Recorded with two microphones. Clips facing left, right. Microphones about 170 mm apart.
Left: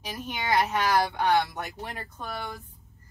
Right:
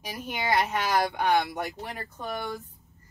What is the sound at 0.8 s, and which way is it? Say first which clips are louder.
Speech: left 1 dB; 15° right (ahead or behind).